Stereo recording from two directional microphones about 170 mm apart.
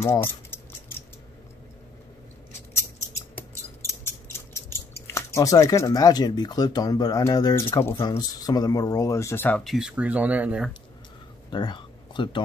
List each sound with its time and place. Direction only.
0.0 s speech: 15° left (ahead or behind)
2.8 s a sound: 15° left (ahead or behind)
4.0 s scissors: 15° left (ahead or behind)
5.0 s speech: 15° left (ahead or behind)
9.6 s speech: centre (ahead or behind)
11.5 s speech: 25° left (ahead or behind)